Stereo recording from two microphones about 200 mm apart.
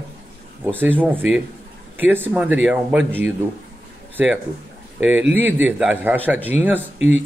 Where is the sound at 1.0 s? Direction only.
10° right (ahead or behind).